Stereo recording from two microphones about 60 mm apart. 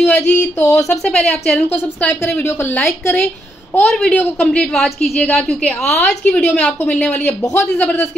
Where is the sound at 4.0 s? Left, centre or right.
Left.